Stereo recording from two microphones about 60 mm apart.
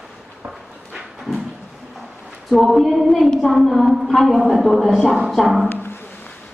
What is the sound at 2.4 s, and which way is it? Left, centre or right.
A woman's voice, centre.